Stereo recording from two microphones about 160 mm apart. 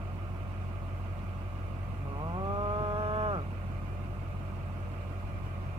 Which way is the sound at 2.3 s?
30° right (ahead or behind).